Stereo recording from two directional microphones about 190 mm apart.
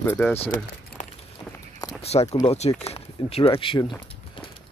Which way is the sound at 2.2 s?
20° left (ahead or behind).